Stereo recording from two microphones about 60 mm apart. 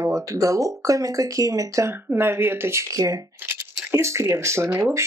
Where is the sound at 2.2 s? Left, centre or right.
Right.